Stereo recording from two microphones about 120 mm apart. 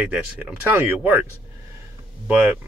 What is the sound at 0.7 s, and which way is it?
Speech, 20° right (ahead or behind).